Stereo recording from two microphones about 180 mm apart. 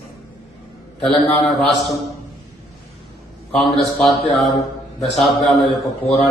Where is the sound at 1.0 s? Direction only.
Centre (ahead or behind).